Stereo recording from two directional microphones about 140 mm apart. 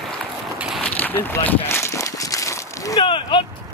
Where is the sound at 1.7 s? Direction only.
20° left (ahead or behind).